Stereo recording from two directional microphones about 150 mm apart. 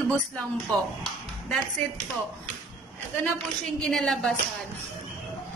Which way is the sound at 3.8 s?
5° left (ahead or behind).